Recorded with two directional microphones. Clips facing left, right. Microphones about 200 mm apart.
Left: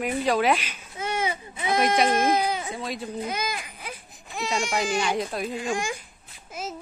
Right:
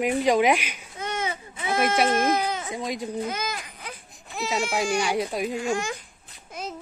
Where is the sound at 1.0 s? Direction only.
10° left (ahead or behind).